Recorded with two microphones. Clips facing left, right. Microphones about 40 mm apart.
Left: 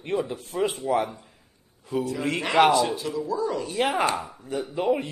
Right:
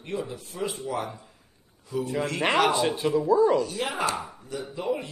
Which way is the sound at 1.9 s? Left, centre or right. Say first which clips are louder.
Left 3 dB; left.